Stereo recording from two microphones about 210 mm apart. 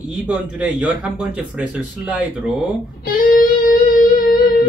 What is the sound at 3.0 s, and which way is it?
Music, 45° left (ahead or behind).